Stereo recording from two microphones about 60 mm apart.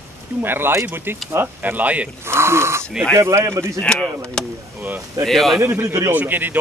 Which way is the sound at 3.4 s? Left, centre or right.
Right.